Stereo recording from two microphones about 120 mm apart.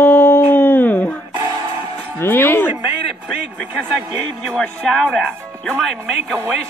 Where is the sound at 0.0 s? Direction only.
20° left (ahead or behind).